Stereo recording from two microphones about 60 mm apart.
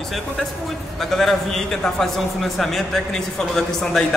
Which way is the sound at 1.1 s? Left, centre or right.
Centre.